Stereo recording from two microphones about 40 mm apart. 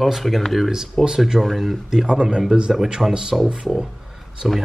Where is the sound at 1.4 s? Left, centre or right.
Centre.